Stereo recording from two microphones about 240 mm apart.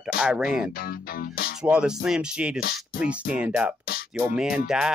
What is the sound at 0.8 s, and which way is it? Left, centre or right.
Speech, left.